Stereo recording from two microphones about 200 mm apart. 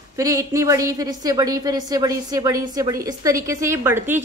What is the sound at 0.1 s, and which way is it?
A woman's voice, 15° right (ahead or behind).